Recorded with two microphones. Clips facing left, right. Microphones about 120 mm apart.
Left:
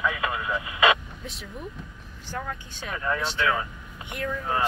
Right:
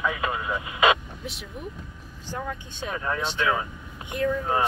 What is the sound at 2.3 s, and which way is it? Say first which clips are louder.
Speech: right 1 dB; 20° right (ahead or behind).